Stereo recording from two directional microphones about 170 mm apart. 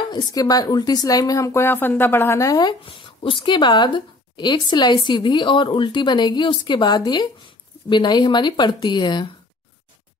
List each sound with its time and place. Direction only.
0.1 s speech: 20° left (ahead or behind)
2.8 s speech: 30° left (ahead or behind)